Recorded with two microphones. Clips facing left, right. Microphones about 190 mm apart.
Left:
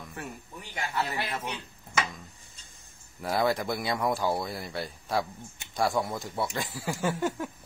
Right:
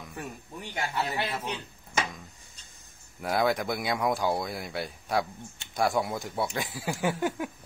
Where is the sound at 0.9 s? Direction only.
15° right (ahead or behind).